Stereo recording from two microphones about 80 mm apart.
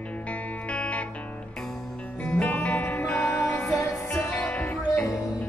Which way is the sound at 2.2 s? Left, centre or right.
Centre.